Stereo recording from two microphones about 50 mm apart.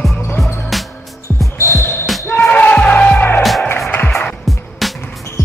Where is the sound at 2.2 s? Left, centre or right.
Left.